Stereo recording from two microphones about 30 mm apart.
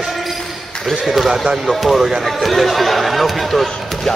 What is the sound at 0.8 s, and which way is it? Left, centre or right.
Speech, centre.